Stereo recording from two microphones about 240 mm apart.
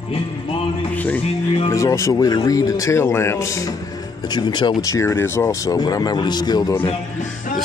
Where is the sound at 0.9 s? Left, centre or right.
Centre.